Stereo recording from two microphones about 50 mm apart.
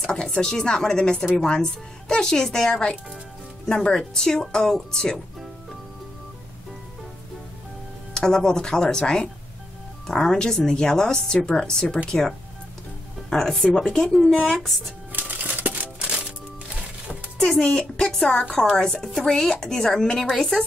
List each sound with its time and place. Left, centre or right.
0.0 s speech: centre
8.1 s speech: centre
15.1 s typewriter: right
17.7 s speech: centre